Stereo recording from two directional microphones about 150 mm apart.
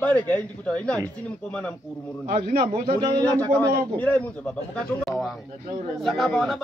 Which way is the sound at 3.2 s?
10° left (ahead or behind).